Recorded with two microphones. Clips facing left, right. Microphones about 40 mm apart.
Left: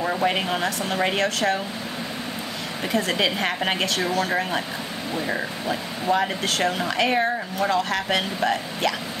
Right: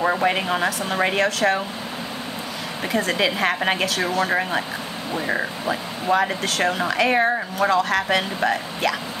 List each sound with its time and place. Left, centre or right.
0.0 s a sound: right
0.3 s speech: centre
2.9 s speech: centre
4.3 s speech: centre
6.2 s speech: centre